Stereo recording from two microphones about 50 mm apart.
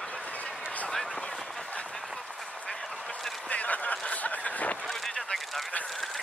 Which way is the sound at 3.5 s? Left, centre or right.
Left.